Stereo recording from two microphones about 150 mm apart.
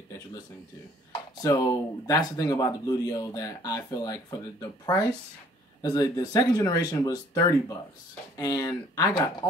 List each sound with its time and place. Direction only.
1.4 s speech: 25° left (ahead or behind)